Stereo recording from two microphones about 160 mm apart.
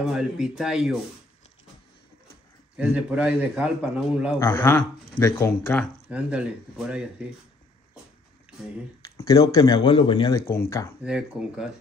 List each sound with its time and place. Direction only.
0.0 s speech: 5° right (ahead or behind)
2.8 s a man's voice: 5° right (ahead or behind)
4.4 s speech: 15° left (ahead or behind)
6.0 s speech: 5° right (ahead or behind)
9.0 s speech: 20° left (ahead or behind)
11.1 s speech: 5° right (ahead or behind)